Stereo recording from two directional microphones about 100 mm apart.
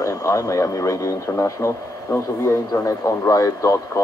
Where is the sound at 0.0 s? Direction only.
30° left (ahead or behind).